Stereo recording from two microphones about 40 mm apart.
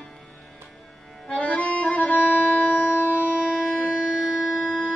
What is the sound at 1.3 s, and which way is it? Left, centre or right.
Music, left.